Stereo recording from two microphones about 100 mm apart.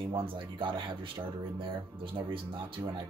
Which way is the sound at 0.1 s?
60° right (ahead or behind).